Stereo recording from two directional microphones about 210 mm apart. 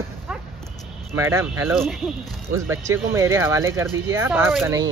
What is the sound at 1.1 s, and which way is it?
Speech, 10° right (ahead or behind).